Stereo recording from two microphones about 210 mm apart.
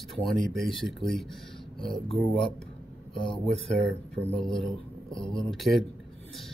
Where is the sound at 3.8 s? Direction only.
55° right (ahead or behind).